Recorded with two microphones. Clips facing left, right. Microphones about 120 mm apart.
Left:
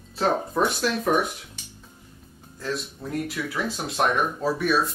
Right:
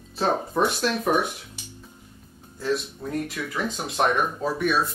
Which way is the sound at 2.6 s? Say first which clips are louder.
Right 4 dB; centre (ahead or behind).